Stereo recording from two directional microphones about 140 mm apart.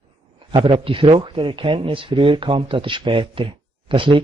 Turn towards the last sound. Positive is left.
turn(degrees=-35)  # may be behind; listen again after turning